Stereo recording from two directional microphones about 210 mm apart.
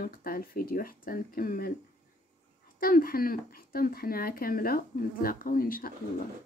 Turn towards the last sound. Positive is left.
turn(degrees=45)  # may be behind; listen again after turning